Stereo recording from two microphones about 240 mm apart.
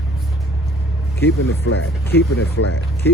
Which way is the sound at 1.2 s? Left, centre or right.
Left.